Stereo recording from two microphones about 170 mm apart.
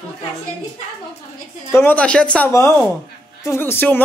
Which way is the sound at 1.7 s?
10° left (ahead or behind).